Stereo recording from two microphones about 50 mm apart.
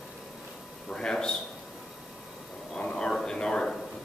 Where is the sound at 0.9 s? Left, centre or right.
Centre.